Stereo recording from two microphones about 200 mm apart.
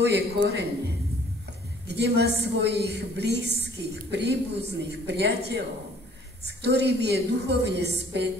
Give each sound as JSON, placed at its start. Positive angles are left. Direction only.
{"t": 0.0, "sound": "a man's voice", "side_deg": -55}
{"t": 1.9, "sound": "a man's voice", "side_deg": -55}